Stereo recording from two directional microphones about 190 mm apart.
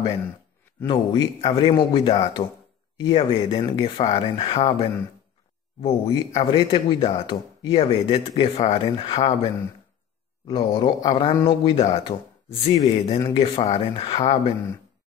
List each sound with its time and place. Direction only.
0.8 s speech: 25° left (ahead or behind)